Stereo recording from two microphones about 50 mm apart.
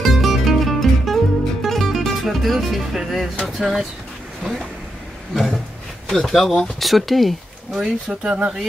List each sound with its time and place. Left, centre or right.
0.0 s music: centre
3.4 s speech: centre
4.4 s speech: centre
6.0 s speech: centre
7.8 s speech: centre